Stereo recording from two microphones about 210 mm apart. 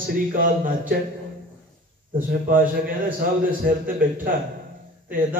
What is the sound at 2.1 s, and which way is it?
A man's voice, 40° right (ahead or behind).